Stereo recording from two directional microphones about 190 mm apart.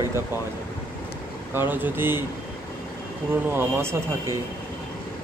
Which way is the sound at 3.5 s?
10° right (ahead or behind).